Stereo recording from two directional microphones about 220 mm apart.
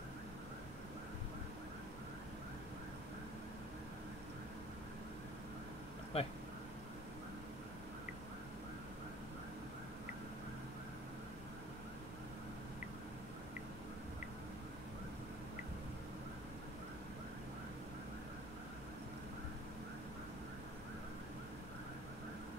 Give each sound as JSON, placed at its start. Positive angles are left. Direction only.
{"t": 6.1, "sound": "speech", "side_deg": 25}